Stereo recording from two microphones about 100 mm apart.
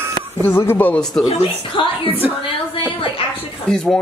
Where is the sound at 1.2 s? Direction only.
55° left (ahead or behind).